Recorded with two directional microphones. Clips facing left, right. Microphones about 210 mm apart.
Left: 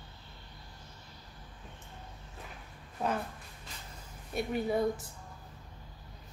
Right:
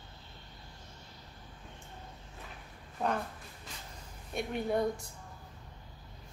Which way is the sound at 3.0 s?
Centre (ahead or behind).